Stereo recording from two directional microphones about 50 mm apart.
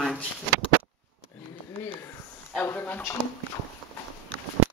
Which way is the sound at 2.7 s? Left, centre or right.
Left.